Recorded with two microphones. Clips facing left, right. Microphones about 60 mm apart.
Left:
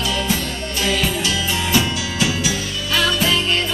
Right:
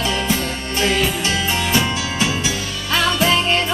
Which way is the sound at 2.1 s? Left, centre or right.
Right.